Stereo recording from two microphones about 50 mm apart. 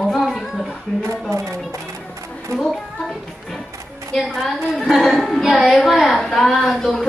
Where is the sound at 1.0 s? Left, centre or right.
Right.